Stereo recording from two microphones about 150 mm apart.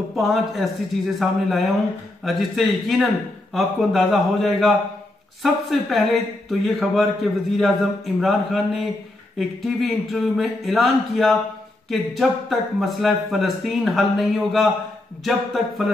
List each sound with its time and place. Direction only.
0.1 s speech: centre (ahead or behind)